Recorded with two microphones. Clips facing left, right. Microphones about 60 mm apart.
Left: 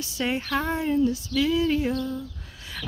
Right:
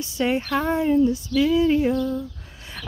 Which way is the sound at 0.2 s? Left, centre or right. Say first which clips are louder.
Right 5 dB; centre.